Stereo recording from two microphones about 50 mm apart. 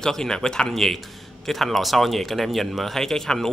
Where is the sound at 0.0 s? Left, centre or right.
Centre.